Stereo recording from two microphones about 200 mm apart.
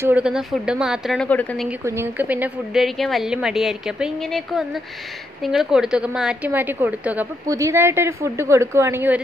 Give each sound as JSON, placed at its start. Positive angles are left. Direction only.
{"t": 0.0, "sound": "a woman's voice", "side_deg": -5}
{"t": 1.7, "sound": "a woman's voice", "side_deg": -10}